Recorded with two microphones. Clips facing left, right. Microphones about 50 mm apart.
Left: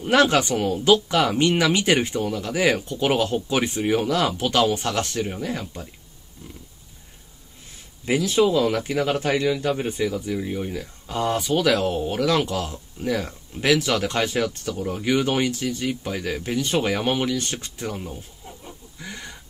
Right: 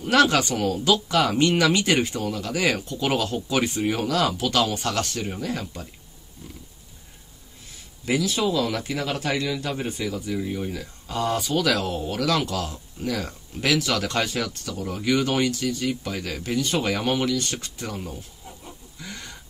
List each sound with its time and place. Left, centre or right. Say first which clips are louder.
0.0 s speech: left 1 dB; left
3.8 s speech: left 3 dB; centre
4.1 s speech: left 1 dB; left
8.0 s speech: left 4 dB; left
10.3 s speech: left 1 dB; centre
10.7 s speech: left 1 dB; centre
18.0 s chicken: left 1 dB; centre
18.9 s a sound: left 2 dB; centre